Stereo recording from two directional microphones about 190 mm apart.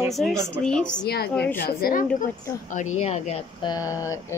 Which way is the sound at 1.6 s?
50° left (ahead or behind).